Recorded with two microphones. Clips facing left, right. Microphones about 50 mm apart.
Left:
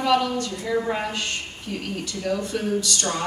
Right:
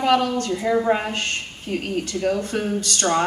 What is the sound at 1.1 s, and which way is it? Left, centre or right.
Speech, right.